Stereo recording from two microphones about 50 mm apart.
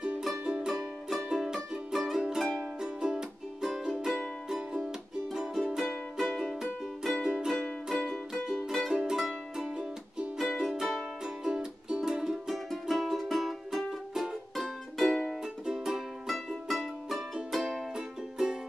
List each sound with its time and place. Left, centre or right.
0.3 s music: centre
7.5 s music: centre
8.3 s music: centre
11.2 s music: centre